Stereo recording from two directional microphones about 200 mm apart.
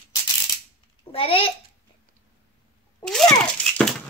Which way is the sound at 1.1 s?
30° left (ahead or behind).